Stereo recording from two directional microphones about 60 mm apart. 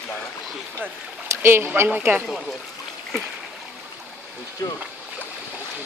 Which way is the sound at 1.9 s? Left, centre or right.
Right.